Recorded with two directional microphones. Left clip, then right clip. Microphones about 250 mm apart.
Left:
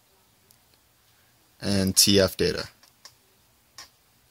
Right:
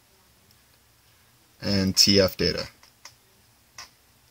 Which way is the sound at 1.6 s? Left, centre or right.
Left.